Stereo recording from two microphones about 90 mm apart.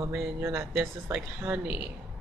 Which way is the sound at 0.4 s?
30° right (ahead or behind).